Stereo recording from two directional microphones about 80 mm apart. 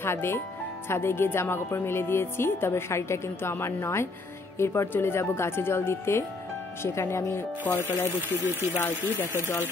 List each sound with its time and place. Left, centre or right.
0.0 s speech: left